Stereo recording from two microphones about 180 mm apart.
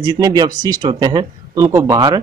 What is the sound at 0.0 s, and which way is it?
Speech, 20° right (ahead or behind).